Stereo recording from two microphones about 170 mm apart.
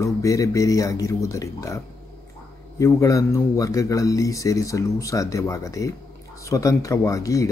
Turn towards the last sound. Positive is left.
turn(degrees=20)  # may be behind; listen again after turning